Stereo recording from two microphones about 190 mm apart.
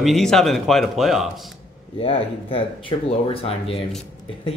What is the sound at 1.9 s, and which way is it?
Speech, 30° left (ahead or behind).